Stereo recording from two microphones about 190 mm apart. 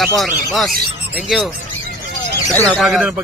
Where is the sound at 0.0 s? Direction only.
Centre (ahead or behind).